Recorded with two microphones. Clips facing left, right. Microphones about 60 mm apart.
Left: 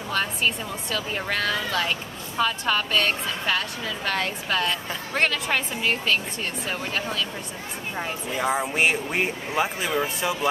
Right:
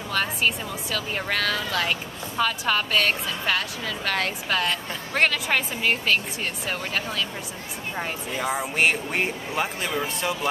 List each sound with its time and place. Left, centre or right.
0.1 s speech: centre